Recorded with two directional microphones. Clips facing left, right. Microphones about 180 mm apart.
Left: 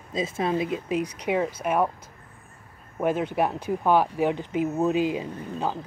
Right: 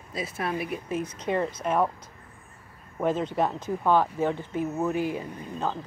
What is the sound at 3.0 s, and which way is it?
Speech, 10° left (ahead or behind).